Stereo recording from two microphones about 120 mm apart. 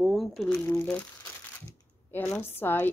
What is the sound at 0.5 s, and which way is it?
Speech, 25° left (ahead or behind).